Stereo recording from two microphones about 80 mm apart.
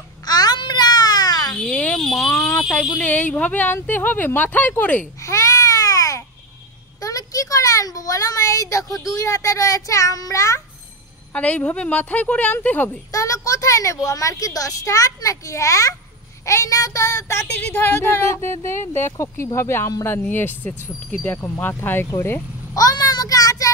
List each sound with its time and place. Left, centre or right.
0.2 s babbling: left
1.6 s a sound: centre
2.9 s speech: left
5.2 s babbling: left
7.0 s a sound: left
9.0 s a child's voice: left
11.3 s a woman's voice: centre
13.1 s a child's voice: left
17.6 s speech: left
22.8 s child singing: left